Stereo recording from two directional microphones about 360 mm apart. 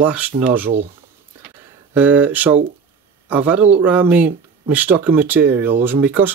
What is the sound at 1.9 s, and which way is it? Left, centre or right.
Speech, centre.